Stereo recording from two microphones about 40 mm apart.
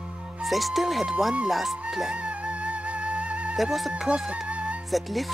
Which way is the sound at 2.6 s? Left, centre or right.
Right.